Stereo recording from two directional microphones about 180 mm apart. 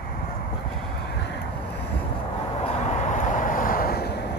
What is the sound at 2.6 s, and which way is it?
Vehicle, 40° left (ahead or behind).